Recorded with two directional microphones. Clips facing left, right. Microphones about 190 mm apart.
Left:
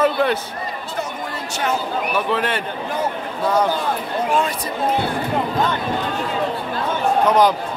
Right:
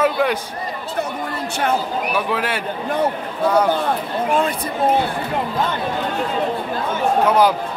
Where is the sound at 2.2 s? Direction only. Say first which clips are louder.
Left 2 dB; 10° right (ahead or behind).